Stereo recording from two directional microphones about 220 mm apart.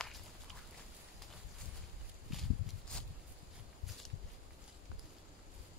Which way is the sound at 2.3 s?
Centre (ahead or behind).